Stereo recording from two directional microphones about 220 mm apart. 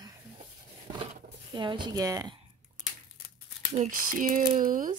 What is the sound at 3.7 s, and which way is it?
Speech, 35° right (ahead or behind).